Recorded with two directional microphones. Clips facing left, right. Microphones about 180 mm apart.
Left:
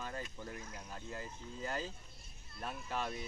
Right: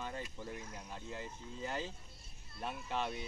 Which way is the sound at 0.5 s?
20° right (ahead or behind).